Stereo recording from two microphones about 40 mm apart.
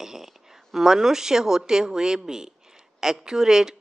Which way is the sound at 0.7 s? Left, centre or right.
Centre.